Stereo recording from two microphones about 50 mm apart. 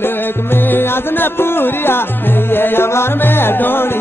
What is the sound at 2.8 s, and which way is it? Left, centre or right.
Music, left.